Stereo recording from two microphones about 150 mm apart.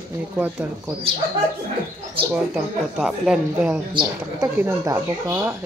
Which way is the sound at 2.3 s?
5° right (ahead or behind).